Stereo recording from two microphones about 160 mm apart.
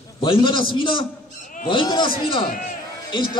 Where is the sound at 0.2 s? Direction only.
30° left (ahead or behind).